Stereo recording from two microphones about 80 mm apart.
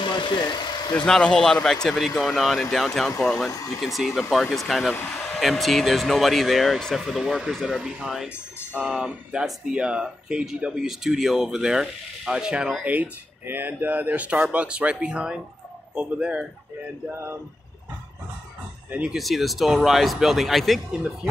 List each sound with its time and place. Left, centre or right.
0.0 s engine: left
1.0 s speech: centre
3.5 s speech: left
3.8 s speech: centre
12.8 s speech: centre
18.9 s speech: centre
19.1 s speech: centre